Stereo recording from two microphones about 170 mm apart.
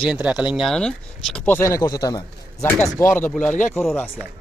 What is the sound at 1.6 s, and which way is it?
Speech, 15° left (ahead or behind).